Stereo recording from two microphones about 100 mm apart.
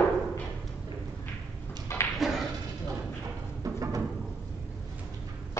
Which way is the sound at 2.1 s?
Centre (ahead or behind).